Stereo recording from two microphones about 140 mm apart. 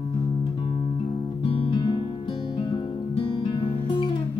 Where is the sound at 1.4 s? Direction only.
40° left (ahead or behind).